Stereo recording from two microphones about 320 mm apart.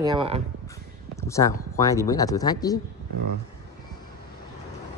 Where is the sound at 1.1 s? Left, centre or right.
Centre.